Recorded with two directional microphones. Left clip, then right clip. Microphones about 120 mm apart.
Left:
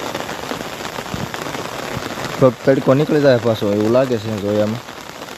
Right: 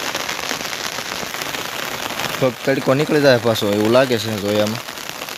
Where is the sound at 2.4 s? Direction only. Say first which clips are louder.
Left 6 dB; 40° left (ahead or behind).